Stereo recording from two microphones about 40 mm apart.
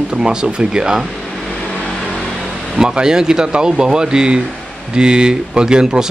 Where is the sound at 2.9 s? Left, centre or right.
Centre.